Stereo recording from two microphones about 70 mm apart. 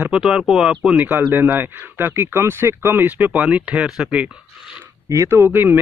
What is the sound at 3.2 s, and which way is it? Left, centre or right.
Speech, centre.